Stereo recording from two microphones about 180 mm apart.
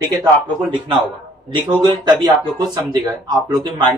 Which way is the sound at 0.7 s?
30° right (ahead or behind).